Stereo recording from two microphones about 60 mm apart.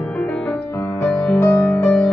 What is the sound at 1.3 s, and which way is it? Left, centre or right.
Music, left.